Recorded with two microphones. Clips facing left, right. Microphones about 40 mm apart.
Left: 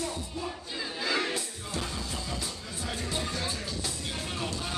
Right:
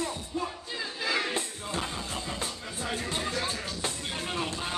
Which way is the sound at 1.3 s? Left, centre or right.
Right.